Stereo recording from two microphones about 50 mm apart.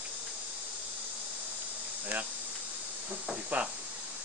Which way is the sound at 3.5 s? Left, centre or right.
Right.